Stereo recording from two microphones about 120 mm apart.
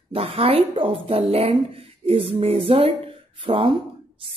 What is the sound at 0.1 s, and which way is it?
A woman's voice, 55° right (ahead or behind).